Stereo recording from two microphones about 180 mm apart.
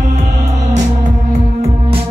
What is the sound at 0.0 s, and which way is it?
Music, 40° right (ahead or behind).